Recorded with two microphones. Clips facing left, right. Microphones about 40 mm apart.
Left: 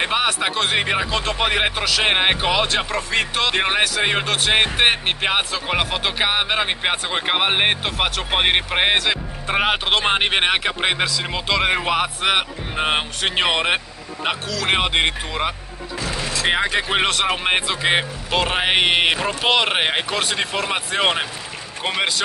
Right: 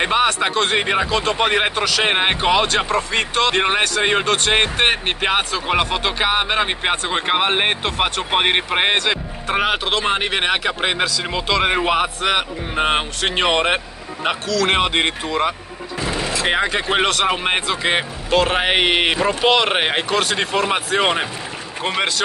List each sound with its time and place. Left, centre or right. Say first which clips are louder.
0.0 s speech: right 3 dB; centre
9.8 s speech: left 1 dB; left
10.4 s speech: even; centre
12.2 s speech: even; centre
12.7 s speech: right 2 dB; centre
16.0 s a sound: right 3 dB; right
16.4 s speech: even; centre